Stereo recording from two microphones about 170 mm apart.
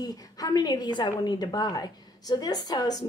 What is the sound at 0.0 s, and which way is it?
A woman's voice, 20° left (ahead or behind).